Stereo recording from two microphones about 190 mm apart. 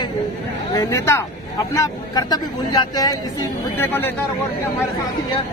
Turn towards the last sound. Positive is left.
turn(degrees=10)  # may be behind; listen again after turning